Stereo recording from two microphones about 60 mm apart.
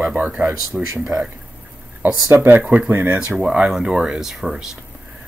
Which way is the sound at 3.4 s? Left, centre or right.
Centre.